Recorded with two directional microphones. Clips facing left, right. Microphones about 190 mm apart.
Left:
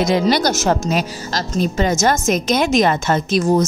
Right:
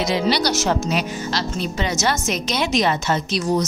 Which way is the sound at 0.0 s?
50° left (ahead or behind).